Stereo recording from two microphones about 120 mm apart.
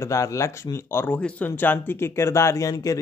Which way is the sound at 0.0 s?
25° left (ahead or behind).